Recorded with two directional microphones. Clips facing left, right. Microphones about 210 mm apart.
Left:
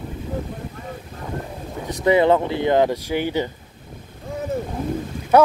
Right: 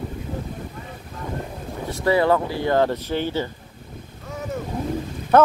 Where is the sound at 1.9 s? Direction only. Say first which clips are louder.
Left 3 dB; 20° left (ahead or behind).